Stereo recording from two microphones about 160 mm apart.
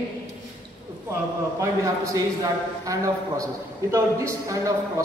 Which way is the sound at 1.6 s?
20° right (ahead or behind).